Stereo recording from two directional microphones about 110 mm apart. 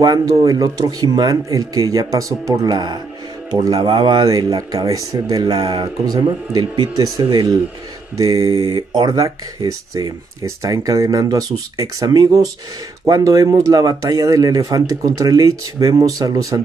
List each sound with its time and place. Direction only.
0.0 s speech: 35° right (ahead or behind)